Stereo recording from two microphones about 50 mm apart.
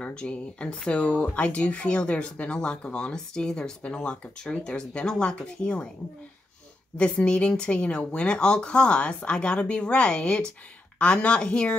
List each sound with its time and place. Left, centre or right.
0.0 s speech: left
7.0 s speech: centre